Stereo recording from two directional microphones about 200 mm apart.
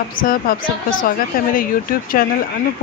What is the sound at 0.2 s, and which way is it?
Speech, 45° left (ahead or behind).